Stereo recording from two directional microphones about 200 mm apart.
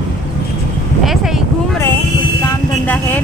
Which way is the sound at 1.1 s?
Centre (ahead or behind).